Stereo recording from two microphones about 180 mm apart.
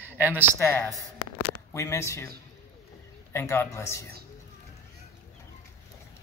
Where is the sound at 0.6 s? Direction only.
10° left (ahead or behind).